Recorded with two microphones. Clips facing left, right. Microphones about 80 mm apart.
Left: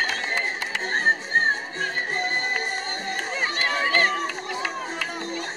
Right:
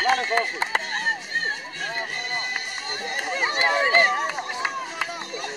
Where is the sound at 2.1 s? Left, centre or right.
Left.